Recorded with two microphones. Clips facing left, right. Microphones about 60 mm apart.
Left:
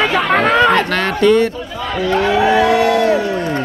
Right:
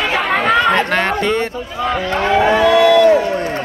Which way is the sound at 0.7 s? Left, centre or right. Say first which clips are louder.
Even; right.